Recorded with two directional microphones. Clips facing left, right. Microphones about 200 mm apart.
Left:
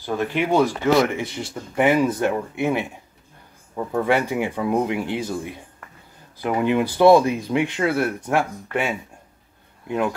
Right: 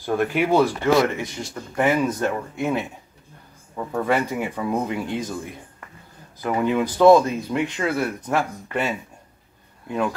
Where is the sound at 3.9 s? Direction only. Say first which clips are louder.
Left 2 dB; 10° left (ahead or behind).